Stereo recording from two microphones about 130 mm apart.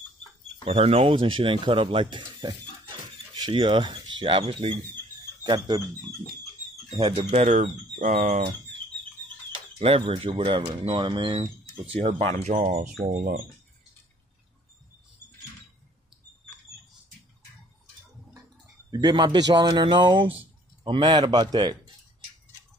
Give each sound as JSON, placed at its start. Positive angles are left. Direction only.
{"t": 0.7, "sound": "speech", "side_deg": -50}
{"t": 7.0, "sound": "speech", "side_deg": -45}
{"t": 8.0, "sound": "speech", "side_deg": -70}
{"t": 9.8, "sound": "speech", "side_deg": -50}
{"t": 11.8, "sound": "speech", "side_deg": -50}
{"t": 12.6, "sound": "speech", "side_deg": -85}
{"t": 18.9, "sound": "speech", "side_deg": -35}